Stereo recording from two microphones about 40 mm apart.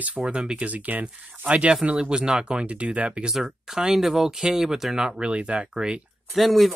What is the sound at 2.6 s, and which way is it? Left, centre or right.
Speech, right.